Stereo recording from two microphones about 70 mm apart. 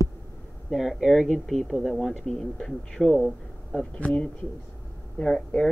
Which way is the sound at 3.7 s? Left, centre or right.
Centre.